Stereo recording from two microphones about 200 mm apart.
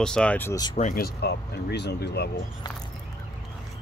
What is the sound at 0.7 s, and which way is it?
Speech, 40° left (ahead or behind).